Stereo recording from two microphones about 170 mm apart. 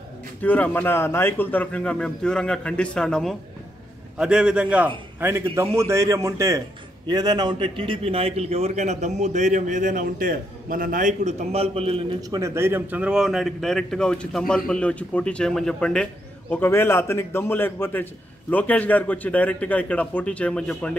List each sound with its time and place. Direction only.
0.4 s a man's voice: 10° left (ahead or behind); by 12.2 s 35° right (ahead or behind)
12.2 s a man's voice: 20° right (ahead or behind); by 20.9 s 5° left (ahead or behind)